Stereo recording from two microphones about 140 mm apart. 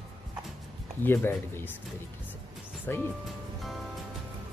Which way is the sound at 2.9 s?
15° left (ahead or behind).